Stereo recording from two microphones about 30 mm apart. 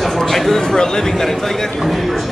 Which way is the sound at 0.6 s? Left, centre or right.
Centre.